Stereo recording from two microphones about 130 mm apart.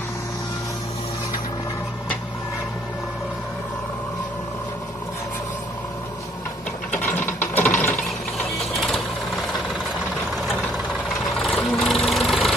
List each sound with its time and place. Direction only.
6.9 s ratchet: 15° left (ahead or behind)
8.7 s vehicle: centre (ahead or behind)
11.3 s vehicle: 5° left (ahead or behind)